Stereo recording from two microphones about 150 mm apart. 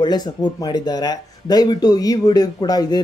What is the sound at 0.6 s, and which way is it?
Speech, 25° left (ahead or behind).